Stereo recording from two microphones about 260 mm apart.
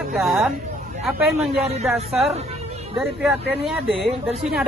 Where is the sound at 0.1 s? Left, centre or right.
Centre.